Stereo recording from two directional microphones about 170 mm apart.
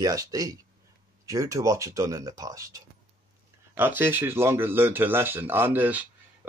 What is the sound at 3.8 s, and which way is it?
Speech, 10° right (ahead or behind).